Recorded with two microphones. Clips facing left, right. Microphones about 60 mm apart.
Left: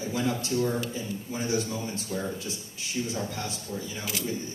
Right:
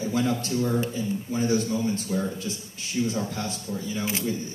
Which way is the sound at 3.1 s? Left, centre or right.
Right.